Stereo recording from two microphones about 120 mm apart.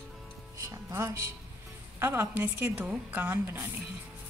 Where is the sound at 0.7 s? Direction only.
25° right (ahead or behind).